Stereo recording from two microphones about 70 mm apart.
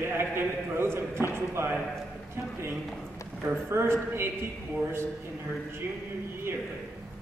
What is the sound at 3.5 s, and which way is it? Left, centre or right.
A man's voice, right.